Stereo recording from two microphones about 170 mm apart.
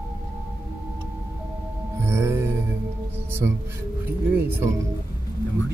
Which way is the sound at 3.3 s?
15° right (ahead or behind).